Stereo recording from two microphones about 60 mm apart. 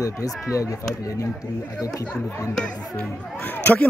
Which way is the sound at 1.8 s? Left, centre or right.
Left.